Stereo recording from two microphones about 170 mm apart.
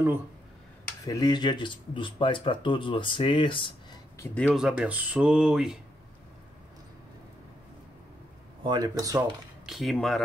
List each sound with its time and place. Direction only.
1.0 s speech: 20° left (ahead or behind)
4.5 s speech: 5° right (ahead or behind)
8.6 s speech: 25° right (ahead or behind)
9.7 s speech: centre (ahead or behind)